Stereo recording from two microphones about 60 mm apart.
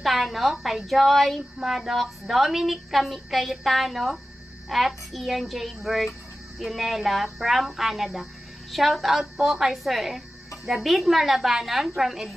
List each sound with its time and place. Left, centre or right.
0.0 s a woman's voice: centre